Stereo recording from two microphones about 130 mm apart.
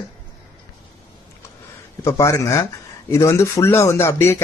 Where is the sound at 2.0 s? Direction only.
25° left (ahead or behind).